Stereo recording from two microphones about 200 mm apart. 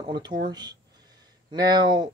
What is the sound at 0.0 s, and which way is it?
Speech, 20° right (ahead or behind).